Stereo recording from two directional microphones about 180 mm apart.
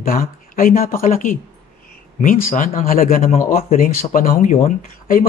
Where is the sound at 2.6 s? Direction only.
50° left (ahead or behind).